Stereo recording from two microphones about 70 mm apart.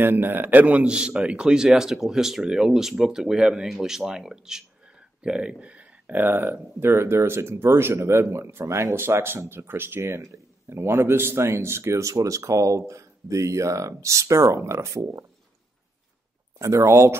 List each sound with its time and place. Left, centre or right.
0.0 s a man's voice: right
16.5 s speech: right